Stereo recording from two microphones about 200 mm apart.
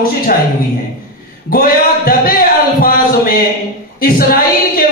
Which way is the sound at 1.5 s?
45° left (ahead or behind).